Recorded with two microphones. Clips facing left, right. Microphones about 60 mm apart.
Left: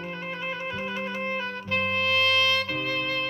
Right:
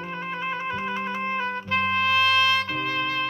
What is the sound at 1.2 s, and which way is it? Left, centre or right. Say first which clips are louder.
Music: right 3 dB; right.